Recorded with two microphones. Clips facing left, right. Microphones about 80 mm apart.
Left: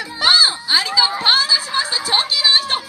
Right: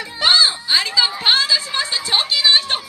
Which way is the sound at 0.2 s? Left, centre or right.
Left.